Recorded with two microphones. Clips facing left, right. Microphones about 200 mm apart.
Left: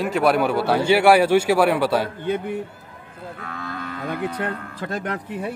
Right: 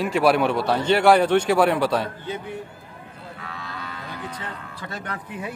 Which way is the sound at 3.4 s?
50° left (ahead or behind).